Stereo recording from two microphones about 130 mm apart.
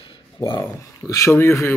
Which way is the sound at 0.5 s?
25° left (ahead or behind).